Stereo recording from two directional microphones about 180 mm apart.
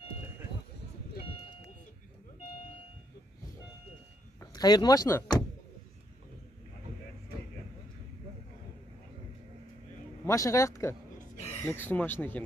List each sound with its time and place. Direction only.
4.4 s speech: 20° left (ahead or behind)
10.2 s speech: 20° left (ahead or behind)